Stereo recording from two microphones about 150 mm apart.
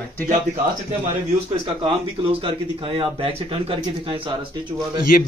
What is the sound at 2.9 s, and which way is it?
Speech, 35° right (ahead or behind).